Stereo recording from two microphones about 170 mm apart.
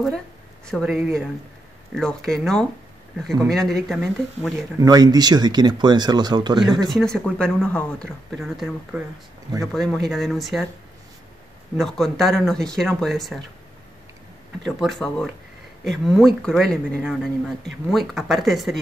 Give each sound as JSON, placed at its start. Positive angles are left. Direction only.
{"t": 0.7, "sound": "speech", "side_deg": 0}
{"t": 4.7, "sound": "speech", "side_deg": -20}
{"t": 6.9, "sound": "speech", "side_deg": 5}
{"t": 11.7, "sound": "speech", "side_deg": 0}
{"t": 14.6, "sound": "speech", "side_deg": 0}